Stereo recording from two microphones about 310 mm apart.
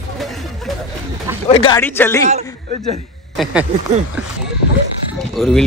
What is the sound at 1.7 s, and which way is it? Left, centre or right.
Speech, centre.